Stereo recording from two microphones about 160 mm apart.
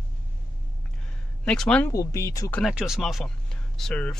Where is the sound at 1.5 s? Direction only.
5° left (ahead or behind).